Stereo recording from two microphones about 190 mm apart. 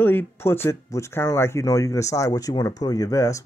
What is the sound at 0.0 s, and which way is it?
Speech, 10° left (ahead or behind).